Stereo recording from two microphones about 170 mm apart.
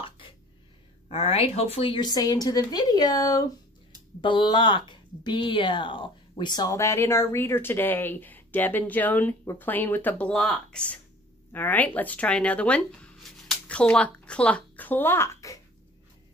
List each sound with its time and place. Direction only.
1.1 s a woman's voice: 35° left (ahead or behind); by 15.6 s 15° left (ahead or behind)